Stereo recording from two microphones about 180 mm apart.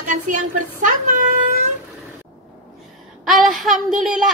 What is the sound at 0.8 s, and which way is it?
Speech, 45° right (ahead or behind).